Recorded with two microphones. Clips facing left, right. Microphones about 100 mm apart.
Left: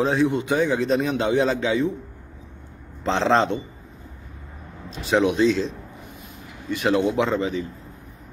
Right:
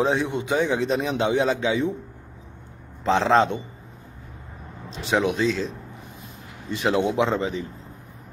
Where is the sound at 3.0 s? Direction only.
5° right (ahead or behind).